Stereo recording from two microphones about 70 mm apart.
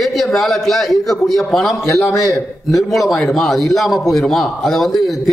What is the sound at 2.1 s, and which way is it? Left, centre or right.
Speech, left.